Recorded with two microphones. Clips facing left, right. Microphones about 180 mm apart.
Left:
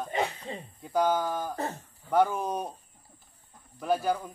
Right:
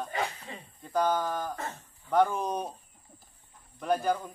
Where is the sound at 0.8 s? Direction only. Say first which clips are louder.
Left 1 dB; 10° left (ahead or behind).